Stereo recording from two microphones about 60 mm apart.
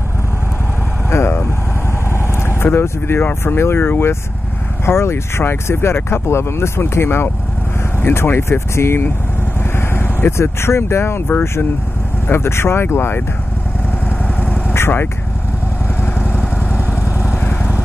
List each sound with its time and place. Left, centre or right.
1.1 s vehicle: left
3.3 s speech: left
14.2 s vehicle: left
14.7 s vehicle: left
16.2 s vehicle: centre